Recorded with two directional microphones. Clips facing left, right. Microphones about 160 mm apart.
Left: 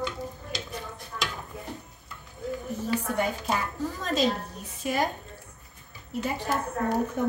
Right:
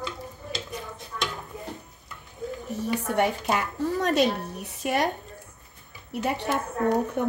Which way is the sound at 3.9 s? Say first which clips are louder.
Right 3 dB; 70° right (ahead or behind).